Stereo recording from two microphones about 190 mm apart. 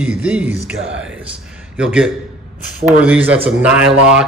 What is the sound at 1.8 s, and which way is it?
A man's voice, 5° right (ahead or behind).